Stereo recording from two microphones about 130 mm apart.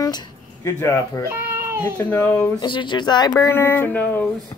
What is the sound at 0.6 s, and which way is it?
Speech, 20° left (ahead or behind).